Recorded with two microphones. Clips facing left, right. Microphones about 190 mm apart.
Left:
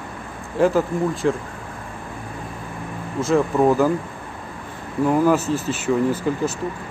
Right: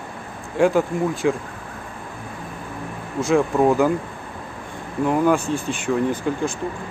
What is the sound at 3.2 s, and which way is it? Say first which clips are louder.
Speech: even; centre (ahead or behind).